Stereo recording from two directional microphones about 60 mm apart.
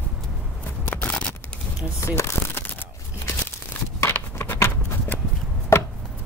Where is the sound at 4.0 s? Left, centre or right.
Left.